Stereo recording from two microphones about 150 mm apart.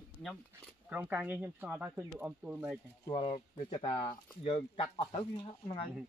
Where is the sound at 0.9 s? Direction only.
10° right (ahead or behind).